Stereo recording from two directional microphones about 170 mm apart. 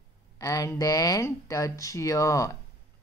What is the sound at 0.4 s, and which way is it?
Speech, 20° left (ahead or behind).